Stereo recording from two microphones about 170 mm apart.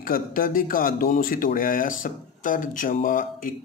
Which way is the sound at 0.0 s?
55° left (ahead or behind).